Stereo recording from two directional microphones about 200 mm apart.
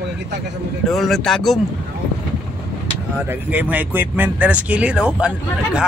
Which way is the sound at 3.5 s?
10° right (ahead or behind).